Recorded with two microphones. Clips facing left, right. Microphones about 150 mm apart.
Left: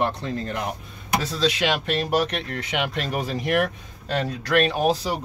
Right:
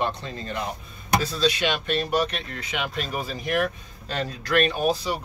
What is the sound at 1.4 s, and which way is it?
Speech, 90° left.